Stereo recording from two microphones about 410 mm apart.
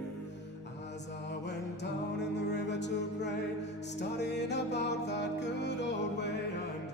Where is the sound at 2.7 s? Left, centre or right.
Left.